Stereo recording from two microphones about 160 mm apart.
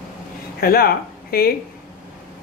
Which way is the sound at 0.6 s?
75° left (ahead or behind).